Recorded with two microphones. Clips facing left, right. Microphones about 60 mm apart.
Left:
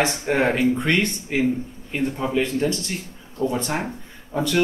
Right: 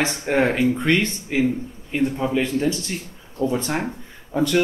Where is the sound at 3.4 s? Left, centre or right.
Left.